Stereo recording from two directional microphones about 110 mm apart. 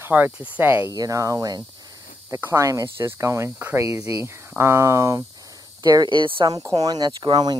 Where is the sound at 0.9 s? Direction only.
30° right (ahead or behind).